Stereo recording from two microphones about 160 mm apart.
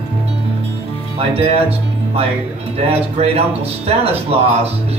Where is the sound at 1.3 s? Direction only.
40° right (ahead or behind).